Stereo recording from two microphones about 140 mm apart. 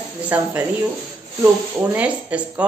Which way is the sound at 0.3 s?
15° right (ahead or behind).